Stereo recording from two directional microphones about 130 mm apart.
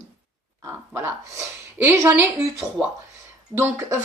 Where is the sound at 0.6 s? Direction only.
20° right (ahead or behind).